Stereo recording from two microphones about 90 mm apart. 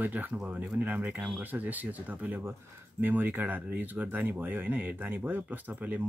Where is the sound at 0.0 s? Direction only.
20° right (ahead or behind).